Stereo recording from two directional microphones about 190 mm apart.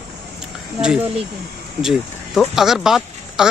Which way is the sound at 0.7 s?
5° right (ahead or behind).